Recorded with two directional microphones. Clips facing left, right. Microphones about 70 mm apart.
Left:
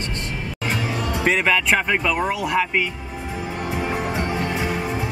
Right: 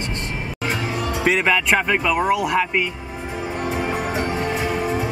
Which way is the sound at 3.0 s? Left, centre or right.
Centre.